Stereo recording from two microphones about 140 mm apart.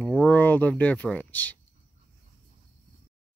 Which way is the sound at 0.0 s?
10° left (ahead or behind).